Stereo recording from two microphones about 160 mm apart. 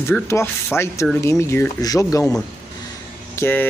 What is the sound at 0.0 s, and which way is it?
Speech, 15° left (ahead or behind).